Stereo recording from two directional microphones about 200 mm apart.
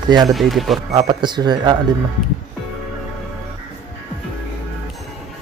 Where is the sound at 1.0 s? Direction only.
20° right (ahead or behind).